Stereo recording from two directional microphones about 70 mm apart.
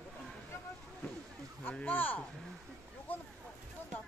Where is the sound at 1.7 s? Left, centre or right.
Left.